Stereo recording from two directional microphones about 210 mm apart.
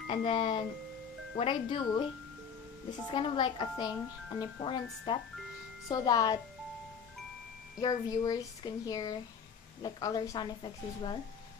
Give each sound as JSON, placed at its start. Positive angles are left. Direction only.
{"t": 0.1, "sound": "a woman's voice", "side_deg": 25}
{"t": 3.1, "sound": "a woman's voice", "side_deg": 20}
{"t": 7.8, "sound": "a woman's voice", "side_deg": 15}